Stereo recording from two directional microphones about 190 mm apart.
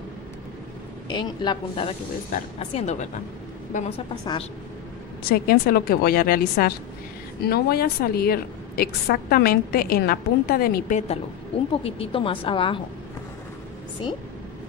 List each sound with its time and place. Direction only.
1.0 s a woman's voice: 25° left (ahead or behind)
2.3 s speech: 35° left (ahead or behind)
5.2 s a woman's voice: 50° left (ahead or behind)
11.8 s a woman's voice: 30° left (ahead or behind)